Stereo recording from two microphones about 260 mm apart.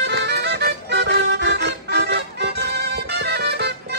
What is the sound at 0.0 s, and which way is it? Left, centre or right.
Music, right.